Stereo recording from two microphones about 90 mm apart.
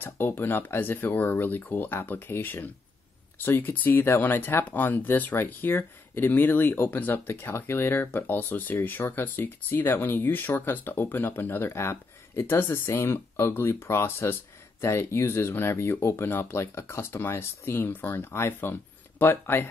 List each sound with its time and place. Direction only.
0.0 s speech: 25° left (ahead or behind)